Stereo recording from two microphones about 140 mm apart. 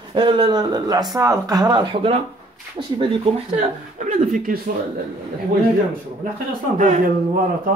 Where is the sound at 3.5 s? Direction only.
65° right (ahead or behind).